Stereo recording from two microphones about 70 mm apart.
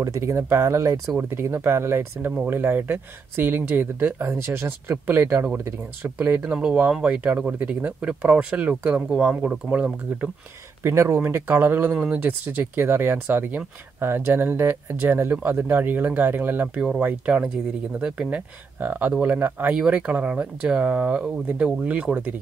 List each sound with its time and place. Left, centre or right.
0.0 s speech: right
6.1 s speech: right
10.8 s speech: right
11.9 s speech: centre
18.8 s speech: right
19.7 s speech: centre